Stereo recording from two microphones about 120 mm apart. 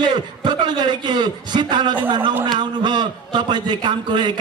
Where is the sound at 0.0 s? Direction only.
40° right (ahead or behind).